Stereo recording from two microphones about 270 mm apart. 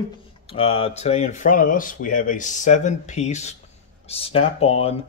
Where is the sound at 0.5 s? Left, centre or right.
Centre.